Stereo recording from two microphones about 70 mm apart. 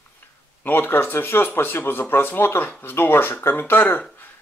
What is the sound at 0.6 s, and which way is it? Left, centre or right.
Speech, left.